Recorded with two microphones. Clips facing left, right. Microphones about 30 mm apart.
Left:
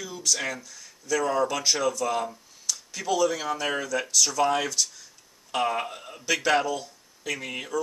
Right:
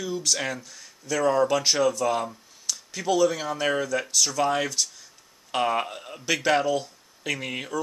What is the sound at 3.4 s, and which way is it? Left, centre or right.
Speech, centre.